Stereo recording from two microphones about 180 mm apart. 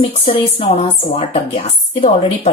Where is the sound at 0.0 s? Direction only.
30° left (ahead or behind).